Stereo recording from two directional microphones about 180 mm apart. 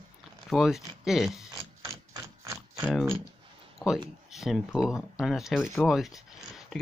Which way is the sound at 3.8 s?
15° left (ahead or behind).